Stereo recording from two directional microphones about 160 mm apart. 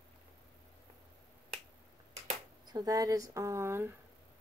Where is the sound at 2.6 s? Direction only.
25° right (ahead or behind).